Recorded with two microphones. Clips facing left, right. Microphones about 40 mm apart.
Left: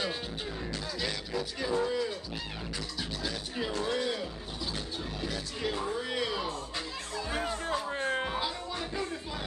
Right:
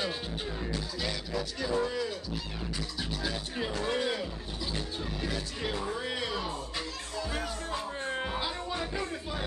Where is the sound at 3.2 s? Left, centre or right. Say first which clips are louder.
Even; centre.